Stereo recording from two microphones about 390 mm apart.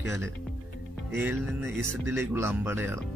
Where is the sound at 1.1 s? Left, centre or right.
Centre.